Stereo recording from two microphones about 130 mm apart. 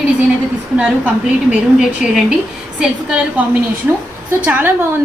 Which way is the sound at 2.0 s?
Centre (ahead or behind).